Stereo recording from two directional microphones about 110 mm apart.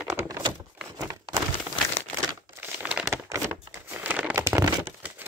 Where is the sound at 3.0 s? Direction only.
30° right (ahead or behind).